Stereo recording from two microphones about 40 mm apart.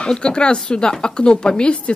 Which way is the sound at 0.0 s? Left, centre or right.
Left.